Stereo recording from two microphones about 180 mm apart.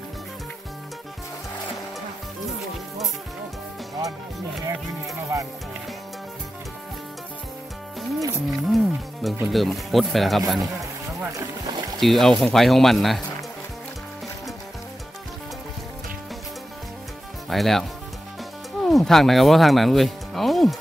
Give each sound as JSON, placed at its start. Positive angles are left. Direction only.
{"t": 5.3, "sound": "speech", "side_deg": -15}
{"t": 8.5, "sound": "speech", "side_deg": 0}
{"t": 11.3, "sound": "speech", "side_deg": -25}
{"t": 12.0, "sound": "speech", "side_deg": 0}
{"t": 17.5, "sound": "speech", "side_deg": 0}